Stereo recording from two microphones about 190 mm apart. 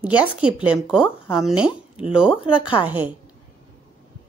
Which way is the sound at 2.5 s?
25° left (ahead or behind).